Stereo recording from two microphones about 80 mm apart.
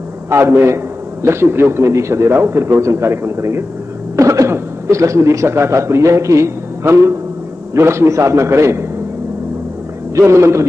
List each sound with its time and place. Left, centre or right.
0.3 s a man's voice: right
10.1 s a man's voice: right